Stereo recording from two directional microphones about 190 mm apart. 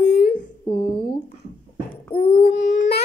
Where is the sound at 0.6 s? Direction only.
25° left (ahead or behind).